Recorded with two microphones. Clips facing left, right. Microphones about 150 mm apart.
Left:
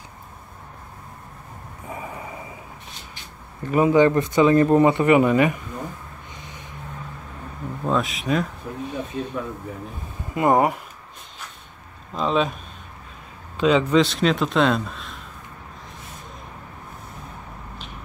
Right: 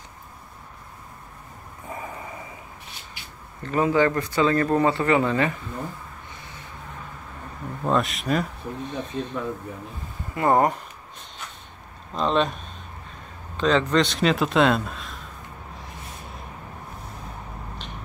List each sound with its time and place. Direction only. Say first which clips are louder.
1.9 s vehicle: left 1 dB; 15° left (ahead or behind)
3.6 s speech: left 4 dB; 15° left (ahead or behind)
7.8 s speech: even; centre (ahead or behind)
8.9 s speech: left 2 dB; 10° left (ahead or behind)
12.1 s speech: left 1 dB; 5° left (ahead or behind)
13.6 s speech: left 3 dB; 10° left (ahead or behind)